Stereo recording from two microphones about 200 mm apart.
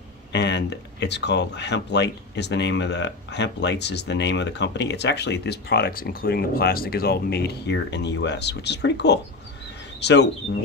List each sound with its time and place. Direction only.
0.3 s speech: 60° left (ahead or behind)